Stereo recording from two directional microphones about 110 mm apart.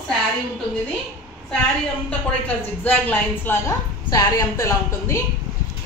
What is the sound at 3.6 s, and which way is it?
A woman's voice, 30° left (ahead or behind).